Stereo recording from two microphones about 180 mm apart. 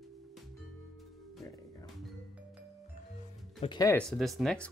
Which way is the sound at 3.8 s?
5° left (ahead or behind).